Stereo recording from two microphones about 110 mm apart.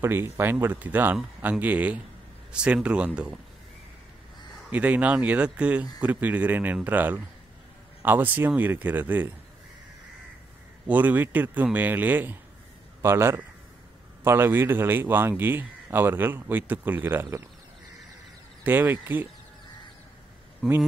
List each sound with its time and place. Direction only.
0.0 s a man's voice: 20° right (ahead or behind)
4.6 s a man's voice: 15° right (ahead or behind)
10.9 s a man's voice: 15° right (ahead or behind)
18.6 s a man's voice: 15° right (ahead or behind)
20.6 s speech: centre (ahead or behind)